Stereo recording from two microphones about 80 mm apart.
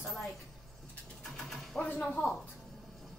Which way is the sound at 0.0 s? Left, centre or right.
Centre.